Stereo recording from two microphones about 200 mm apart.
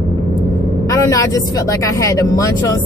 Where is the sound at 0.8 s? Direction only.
15° left (ahead or behind).